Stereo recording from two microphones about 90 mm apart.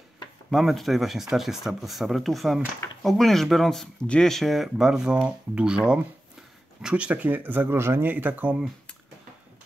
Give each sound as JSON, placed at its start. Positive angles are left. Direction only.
{"t": 0.5, "sound": "speech", "side_deg": 0}